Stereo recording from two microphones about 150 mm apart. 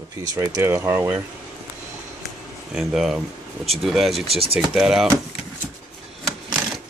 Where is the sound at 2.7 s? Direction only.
Centre (ahead or behind).